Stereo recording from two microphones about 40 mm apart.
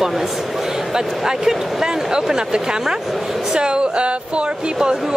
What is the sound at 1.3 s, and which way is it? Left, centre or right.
Speech, centre.